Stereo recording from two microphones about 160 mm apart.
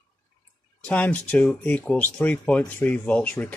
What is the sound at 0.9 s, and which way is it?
Speech, 10° left (ahead or behind).